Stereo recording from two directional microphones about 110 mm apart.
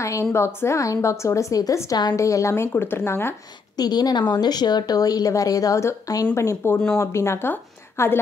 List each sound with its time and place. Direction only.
0.0 s a woman's voice: 25° left (ahead or behind)
3.7 s a woman's voice: 35° left (ahead or behind)